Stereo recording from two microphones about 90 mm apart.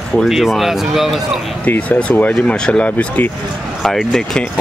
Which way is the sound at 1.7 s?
15° left (ahead or behind).